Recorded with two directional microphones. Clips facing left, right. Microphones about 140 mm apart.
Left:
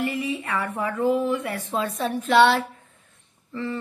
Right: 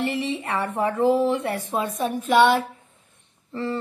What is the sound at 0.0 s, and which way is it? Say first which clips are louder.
Speech: right 1 dB; 30° right (ahead or behind).